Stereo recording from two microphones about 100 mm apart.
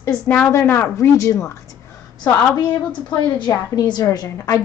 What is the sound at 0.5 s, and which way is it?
Speech, 25° left (ahead or behind).